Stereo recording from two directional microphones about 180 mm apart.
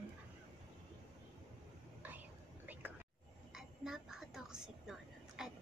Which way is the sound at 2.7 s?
10° right (ahead or behind).